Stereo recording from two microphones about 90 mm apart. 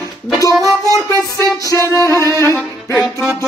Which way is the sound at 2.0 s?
35° left (ahead or behind).